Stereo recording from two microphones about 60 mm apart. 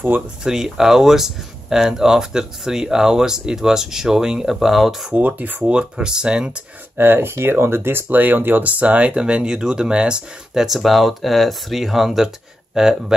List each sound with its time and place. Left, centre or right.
0.4 s speech: centre
5.1 s speech: right
5.6 s speech: centre
7.0 s speech: right; by 12.9 s centre